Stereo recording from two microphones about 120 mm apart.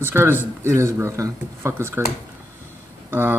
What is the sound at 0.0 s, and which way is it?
Speech, 20° right (ahead or behind).